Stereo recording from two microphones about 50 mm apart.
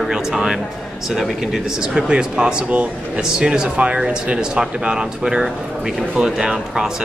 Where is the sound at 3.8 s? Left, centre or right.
Right.